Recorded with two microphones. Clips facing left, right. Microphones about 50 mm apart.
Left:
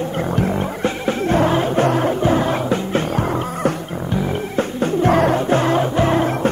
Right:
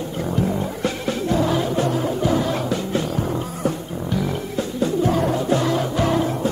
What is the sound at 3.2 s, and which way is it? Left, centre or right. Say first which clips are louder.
Music: left 4 dB; left.